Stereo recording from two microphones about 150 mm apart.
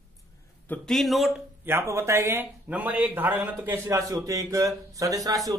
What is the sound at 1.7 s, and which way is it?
Speech, 15° right (ahead or behind).